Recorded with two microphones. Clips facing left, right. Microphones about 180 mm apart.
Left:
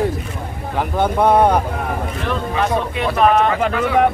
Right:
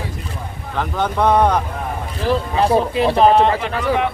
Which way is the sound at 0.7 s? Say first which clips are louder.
Left 3 dB; 10° left (ahead or behind).